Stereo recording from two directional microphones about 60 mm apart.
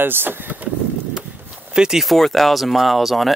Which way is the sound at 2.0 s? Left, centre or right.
Centre.